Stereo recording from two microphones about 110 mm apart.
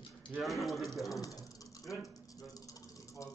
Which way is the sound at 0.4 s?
Centre (ahead or behind).